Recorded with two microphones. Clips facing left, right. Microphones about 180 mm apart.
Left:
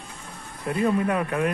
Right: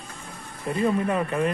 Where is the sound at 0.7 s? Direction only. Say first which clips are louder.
Left 1 dB; 5° left (ahead or behind).